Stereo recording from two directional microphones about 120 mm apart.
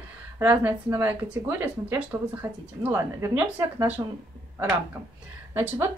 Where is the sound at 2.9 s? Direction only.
25° right (ahead or behind).